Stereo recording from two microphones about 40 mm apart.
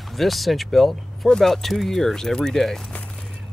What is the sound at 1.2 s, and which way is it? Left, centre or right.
Speech, centre.